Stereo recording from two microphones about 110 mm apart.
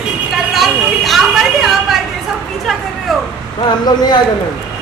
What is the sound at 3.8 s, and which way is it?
Speech, 40° left (ahead or behind).